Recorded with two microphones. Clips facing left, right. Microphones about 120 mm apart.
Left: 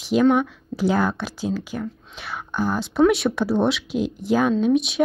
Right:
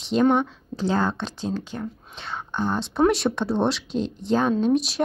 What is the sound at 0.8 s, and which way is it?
Speech, 10° left (ahead or behind).